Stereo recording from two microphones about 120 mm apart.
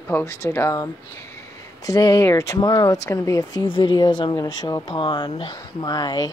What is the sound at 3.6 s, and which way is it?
Speech, 40° left (ahead or behind).